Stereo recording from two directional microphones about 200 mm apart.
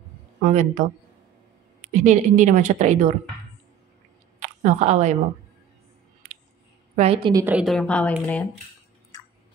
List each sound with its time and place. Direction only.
0.4 s a woman's voice: 35° right (ahead or behind)
1.9 s a woman's voice: 40° right (ahead or behind)
4.4 s a woman's voice: 35° right (ahead or behind)
7.0 s a woman's voice: 30° right (ahead or behind)
7.3 s a woman's voice: 10° right (ahead or behind)